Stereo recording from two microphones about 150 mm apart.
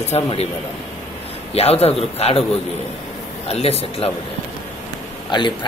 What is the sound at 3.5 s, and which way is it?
Speech, 45° left (ahead or behind).